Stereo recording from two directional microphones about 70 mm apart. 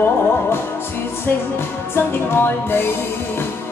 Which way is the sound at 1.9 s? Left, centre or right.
Left.